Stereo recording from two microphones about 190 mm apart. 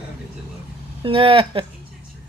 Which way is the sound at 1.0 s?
30° right (ahead or behind).